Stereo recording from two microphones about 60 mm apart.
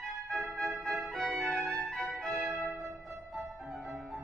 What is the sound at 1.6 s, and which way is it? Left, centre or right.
Music, right.